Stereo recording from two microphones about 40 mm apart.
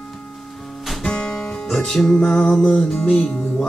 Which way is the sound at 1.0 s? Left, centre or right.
Centre.